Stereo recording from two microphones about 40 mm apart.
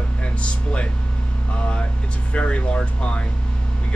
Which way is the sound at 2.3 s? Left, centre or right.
Left.